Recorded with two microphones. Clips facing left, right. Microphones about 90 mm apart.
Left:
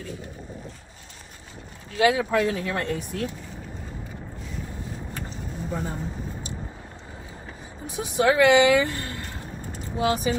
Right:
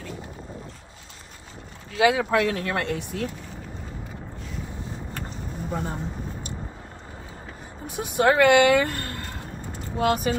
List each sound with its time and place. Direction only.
2.0 s speech: 65° right (ahead or behind)
5.7 s speech: 25° right (ahead or behind)
7.8 s speech: 50° right (ahead or behind)